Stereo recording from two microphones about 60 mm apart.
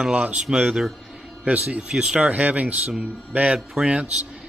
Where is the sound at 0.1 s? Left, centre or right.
Right.